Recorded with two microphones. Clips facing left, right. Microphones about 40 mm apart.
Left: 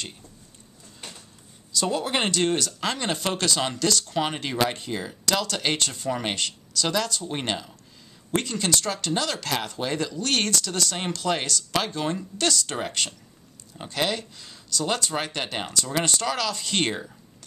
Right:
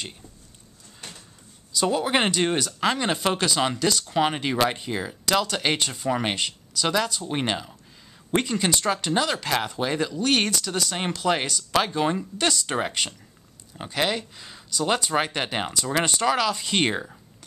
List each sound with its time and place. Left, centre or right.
1.7 s speech: centre